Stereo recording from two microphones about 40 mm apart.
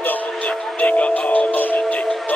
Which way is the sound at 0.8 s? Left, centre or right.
Left.